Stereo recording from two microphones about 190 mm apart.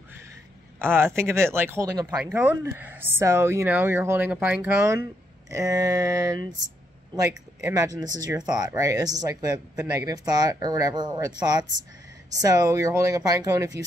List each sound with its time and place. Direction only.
0.7 s speech: 10° right (ahead or behind)
7.7 s speech: 20° right (ahead or behind)